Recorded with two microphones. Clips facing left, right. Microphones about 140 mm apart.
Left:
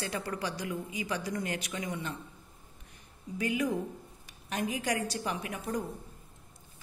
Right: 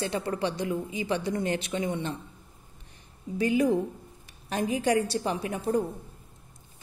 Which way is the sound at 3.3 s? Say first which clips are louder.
Right 7 dB; 35° right (ahead or behind).